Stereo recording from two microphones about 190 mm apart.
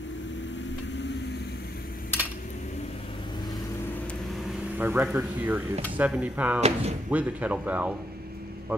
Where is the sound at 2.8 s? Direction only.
25° left (ahead or behind).